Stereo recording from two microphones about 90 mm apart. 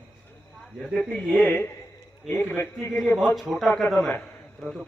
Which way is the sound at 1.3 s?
15° left (ahead or behind).